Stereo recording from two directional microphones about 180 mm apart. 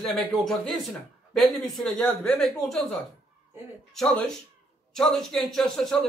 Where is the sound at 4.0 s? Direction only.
5° left (ahead or behind).